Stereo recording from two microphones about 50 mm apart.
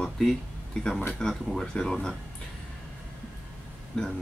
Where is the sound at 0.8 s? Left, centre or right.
Centre.